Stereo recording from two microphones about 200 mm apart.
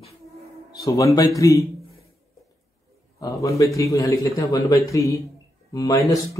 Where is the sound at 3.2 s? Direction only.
15° left (ahead or behind).